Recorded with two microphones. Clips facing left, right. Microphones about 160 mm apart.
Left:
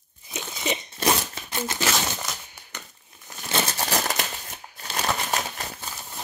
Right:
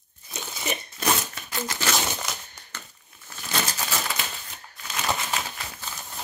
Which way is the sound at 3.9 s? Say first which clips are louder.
Left 4 dB; 45° left (ahead or behind).